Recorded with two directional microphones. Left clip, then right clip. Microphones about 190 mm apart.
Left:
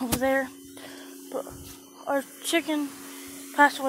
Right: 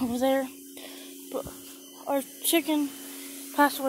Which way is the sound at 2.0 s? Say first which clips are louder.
Left 1 dB; 20° right (ahead or behind).